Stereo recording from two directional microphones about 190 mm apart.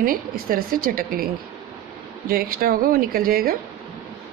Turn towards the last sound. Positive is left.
turn(degrees=-50)  # may be behind; listen again after turning